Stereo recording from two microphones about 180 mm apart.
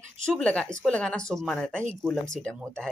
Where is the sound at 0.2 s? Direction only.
5° left (ahead or behind).